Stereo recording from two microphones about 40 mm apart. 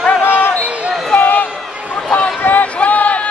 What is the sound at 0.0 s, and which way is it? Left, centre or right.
Basketball bounce, left.